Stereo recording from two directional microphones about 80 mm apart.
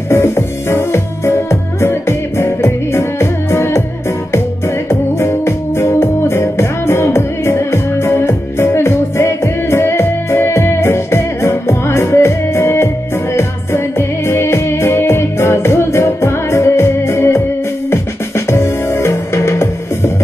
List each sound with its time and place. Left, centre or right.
0.1 s music: left